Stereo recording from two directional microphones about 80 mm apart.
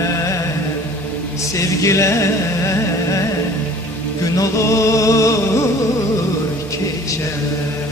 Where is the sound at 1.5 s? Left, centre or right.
Left.